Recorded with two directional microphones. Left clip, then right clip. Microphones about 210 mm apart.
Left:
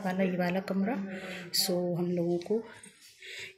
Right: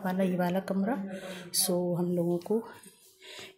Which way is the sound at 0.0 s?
15° right (ahead or behind).